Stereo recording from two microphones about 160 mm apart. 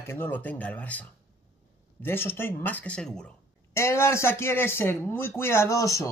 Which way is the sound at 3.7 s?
15° left (ahead or behind).